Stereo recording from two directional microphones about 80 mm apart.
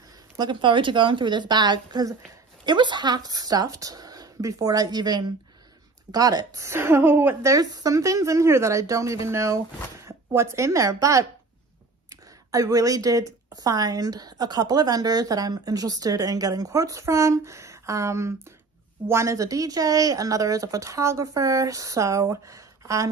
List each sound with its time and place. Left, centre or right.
0.4 s a woman's voice: right
2.6 s speech: right
6.1 s speech: right
7.5 s speech: right